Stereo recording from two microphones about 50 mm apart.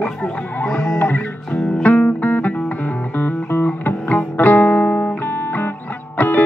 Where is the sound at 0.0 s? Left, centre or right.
Left.